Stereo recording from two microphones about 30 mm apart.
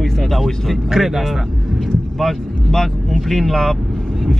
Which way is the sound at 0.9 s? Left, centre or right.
Centre.